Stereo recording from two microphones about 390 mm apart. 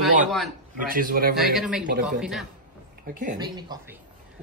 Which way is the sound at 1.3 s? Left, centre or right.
Centre.